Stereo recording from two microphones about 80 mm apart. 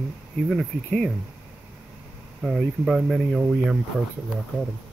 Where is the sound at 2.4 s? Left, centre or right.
Centre.